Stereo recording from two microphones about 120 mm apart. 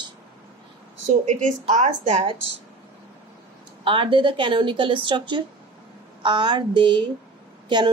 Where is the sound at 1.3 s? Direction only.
80° right.